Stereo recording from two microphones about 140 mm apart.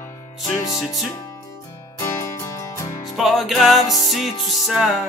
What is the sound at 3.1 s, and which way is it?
Music, centre (ahead or behind).